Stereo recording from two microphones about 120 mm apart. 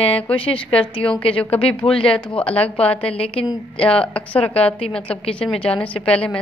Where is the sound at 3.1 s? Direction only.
55° left (ahead or behind).